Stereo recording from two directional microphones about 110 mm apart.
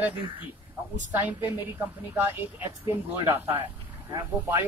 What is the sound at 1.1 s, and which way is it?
Speech, 20° right (ahead or behind).